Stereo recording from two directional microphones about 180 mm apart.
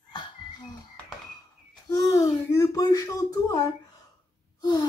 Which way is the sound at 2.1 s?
20° left (ahead or behind).